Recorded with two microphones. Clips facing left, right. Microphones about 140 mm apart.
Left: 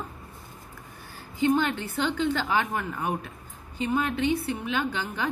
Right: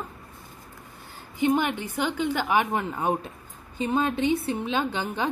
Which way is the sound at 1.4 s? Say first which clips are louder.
Even; 15° right (ahead or behind).